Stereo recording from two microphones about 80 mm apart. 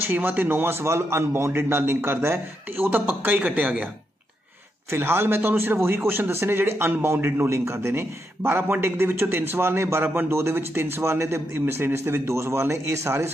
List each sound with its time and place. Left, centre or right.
0.0 s a man's voice: right
4.9 s a man's voice: right